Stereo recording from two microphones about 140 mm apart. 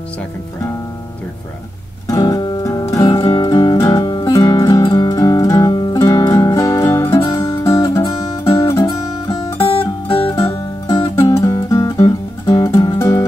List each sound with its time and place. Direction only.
2.0 s music: 25° left (ahead or behind)